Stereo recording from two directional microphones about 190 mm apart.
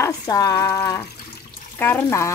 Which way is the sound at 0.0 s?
20° left (ahead or behind).